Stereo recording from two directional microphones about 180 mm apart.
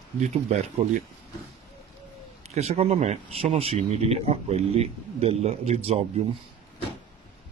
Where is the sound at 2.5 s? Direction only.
35° right (ahead or behind).